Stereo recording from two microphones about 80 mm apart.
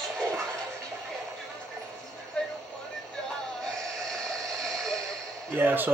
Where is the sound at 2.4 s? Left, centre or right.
Centre.